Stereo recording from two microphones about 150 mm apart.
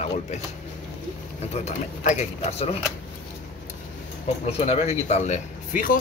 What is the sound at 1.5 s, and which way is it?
A man's voice, 50° left (ahead or behind).